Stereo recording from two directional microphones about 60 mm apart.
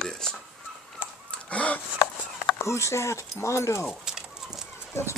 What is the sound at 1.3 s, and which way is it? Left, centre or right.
Crow, left.